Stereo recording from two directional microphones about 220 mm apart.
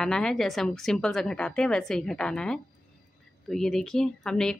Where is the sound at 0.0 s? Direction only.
Centre (ahead or behind).